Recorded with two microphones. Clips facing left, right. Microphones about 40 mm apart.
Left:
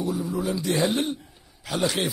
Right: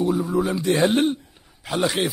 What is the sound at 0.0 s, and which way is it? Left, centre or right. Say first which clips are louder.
Speech: right 6 dB; right.